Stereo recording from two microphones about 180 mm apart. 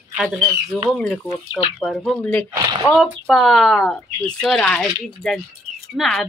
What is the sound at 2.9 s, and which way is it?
Speech, centre (ahead or behind).